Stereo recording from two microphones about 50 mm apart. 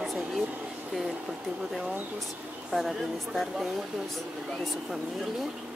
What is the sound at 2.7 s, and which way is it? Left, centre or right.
Speech, centre.